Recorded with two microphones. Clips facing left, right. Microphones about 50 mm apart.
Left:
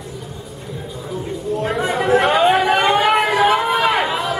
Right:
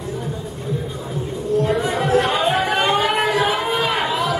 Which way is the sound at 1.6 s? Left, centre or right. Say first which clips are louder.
Even; left.